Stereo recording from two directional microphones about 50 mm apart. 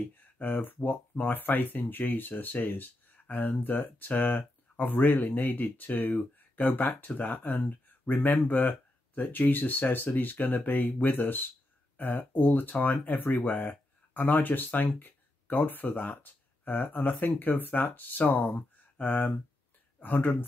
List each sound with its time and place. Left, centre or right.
0.4 s speech: left
15.0 s a sound: left
15.9 s speech: left